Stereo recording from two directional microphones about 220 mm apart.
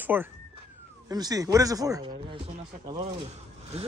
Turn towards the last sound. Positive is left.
turn(degrees=-30)  # may be behind; listen again after turning